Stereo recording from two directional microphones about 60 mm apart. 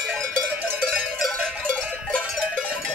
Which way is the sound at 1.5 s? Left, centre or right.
Centre.